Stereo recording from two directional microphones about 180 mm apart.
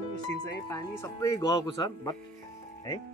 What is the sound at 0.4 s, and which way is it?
Speech, 20° left (ahead or behind).